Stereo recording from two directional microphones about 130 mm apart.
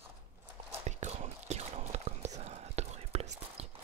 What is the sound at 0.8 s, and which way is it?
Whispering, 60° right (ahead or behind).